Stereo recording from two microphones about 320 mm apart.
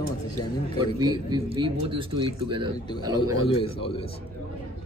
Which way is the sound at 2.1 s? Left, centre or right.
Right.